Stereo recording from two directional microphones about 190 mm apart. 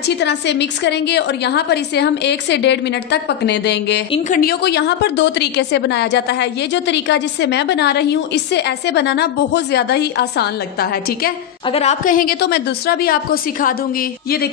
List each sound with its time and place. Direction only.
0.2 s a woman's voice: 65° left (ahead or behind)
4.3 s a woman's voice: 50° left (ahead or behind)
11.7 s a woman's voice: 35° left (ahead or behind)